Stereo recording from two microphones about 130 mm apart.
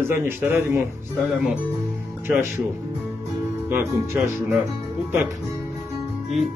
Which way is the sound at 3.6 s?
15° right (ahead or behind).